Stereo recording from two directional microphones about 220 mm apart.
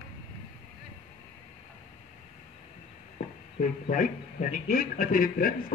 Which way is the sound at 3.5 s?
40° left (ahead or behind).